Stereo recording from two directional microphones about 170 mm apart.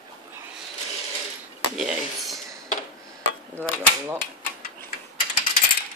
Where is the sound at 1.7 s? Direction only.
Centre (ahead or behind).